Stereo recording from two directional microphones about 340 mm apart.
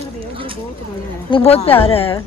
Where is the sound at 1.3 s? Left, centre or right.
Centre.